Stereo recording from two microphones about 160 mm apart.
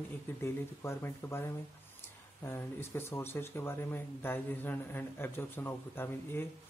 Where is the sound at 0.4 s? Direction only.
15° left (ahead or behind).